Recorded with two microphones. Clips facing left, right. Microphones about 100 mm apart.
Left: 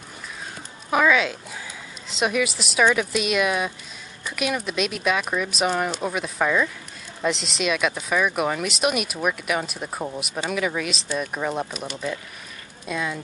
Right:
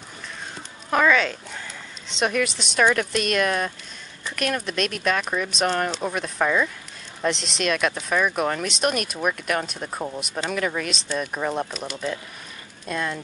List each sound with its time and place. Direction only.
0.8 s speech: 5° left (ahead or behind)